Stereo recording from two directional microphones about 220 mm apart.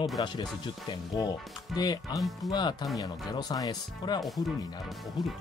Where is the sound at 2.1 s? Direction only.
Centre (ahead or behind).